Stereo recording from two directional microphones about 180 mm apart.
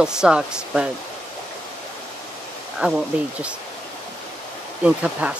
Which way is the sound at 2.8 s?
5° right (ahead or behind).